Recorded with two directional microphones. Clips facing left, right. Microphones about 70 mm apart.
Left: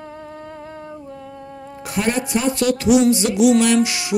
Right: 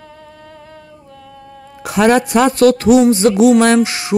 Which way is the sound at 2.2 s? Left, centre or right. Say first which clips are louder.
Right 7 dB; right.